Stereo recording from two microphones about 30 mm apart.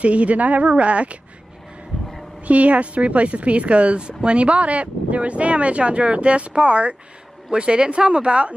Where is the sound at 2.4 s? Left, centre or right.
Right.